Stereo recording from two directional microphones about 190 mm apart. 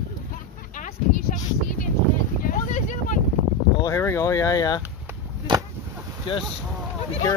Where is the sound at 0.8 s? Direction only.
45° left (ahead or behind).